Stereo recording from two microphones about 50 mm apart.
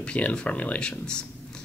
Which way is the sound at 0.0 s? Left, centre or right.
Left.